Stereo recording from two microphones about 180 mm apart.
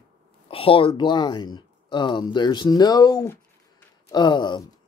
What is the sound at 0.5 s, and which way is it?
Speech, 30° left (ahead or behind).